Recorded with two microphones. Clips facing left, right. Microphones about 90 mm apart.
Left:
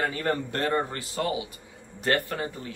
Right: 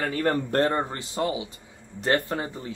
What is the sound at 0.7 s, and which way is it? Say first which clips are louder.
Speech: even; 20° right (ahead or behind).